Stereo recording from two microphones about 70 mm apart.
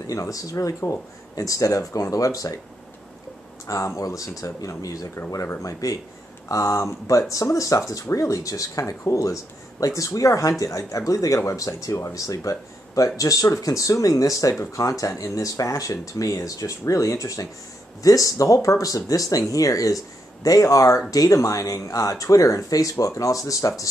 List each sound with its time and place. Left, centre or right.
0.0 s speech: left
3.6 s speech: left